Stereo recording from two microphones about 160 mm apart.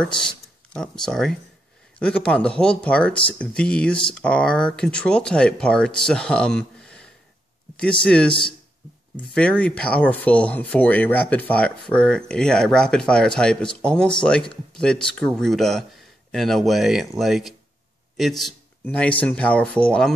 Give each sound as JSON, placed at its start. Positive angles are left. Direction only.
{"t": 0.0, "sound": "speech", "side_deg": 5}
{"t": 8.3, "sound": "speech", "side_deg": 30}
{"t": 9.3, "sound": "speech", "side_deg": 5}